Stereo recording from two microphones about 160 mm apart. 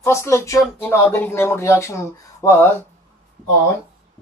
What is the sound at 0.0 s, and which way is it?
Speech, 15° left (ahead or behind).